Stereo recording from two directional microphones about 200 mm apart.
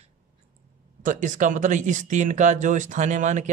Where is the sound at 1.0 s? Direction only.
40° right (ahead or behind).